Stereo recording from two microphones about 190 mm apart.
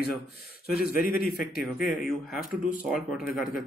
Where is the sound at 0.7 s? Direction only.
50° left (ahead or behind).